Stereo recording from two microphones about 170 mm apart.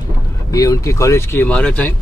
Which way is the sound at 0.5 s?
20° left (ahead or behind).